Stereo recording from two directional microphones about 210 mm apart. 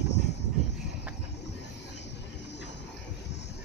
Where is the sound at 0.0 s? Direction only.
55° left (ahead or behind).